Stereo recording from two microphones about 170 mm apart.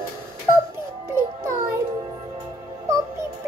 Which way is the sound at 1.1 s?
15° right (ahead or behind).